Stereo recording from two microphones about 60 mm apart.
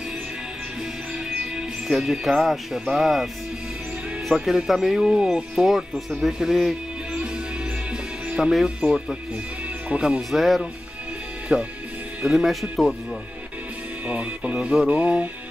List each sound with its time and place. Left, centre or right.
1.3 s speech: centre
4.3 s speech: centre
8.3 s music: centre
8.6 s speech: centre
10.3 s speech: centre
14.0 s speech: right